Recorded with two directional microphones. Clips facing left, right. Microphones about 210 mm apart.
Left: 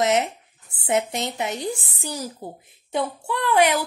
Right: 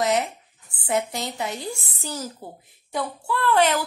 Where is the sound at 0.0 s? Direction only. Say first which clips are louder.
Left 2 dB; 20° left (ahead or behind).